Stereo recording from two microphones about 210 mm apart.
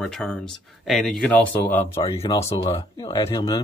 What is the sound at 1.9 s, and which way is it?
Speech, 30° left (ahead or behind).